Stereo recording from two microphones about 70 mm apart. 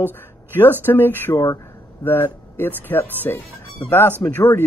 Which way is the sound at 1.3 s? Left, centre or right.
Left.